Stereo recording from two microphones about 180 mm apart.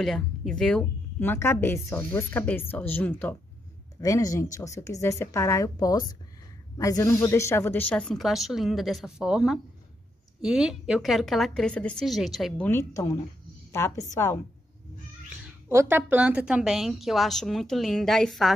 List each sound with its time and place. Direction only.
0.0 s a woman's voice: centre (ahead or behind)
15.7 s a woman's voice: 15° right (ahead or behind); by 18.5 s centre (ahead or behind)